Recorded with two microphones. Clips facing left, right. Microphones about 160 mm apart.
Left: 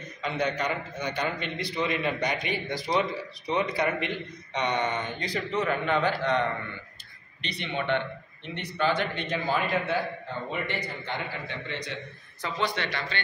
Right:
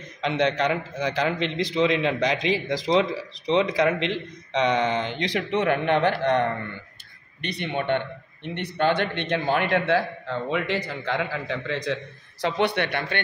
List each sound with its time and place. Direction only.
0.2 s a man's voice: 90° right; by 13.2 s 55° right (ahead or behind)